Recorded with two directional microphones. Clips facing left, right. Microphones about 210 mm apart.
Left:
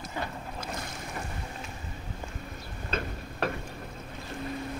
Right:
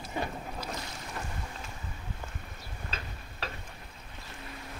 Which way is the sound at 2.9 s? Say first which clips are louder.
Left 13 dB; 55° left (ahead or behind).